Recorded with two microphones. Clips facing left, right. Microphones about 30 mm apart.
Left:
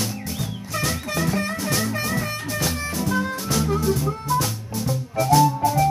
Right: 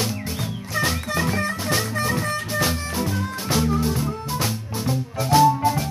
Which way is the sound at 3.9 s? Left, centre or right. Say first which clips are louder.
Left 3 dB; right.